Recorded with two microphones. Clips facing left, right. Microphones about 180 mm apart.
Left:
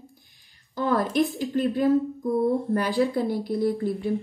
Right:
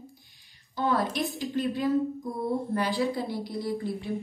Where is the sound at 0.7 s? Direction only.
45° left (ahead or behind).